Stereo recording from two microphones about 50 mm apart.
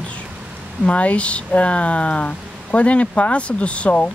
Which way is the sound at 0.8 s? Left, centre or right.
Left.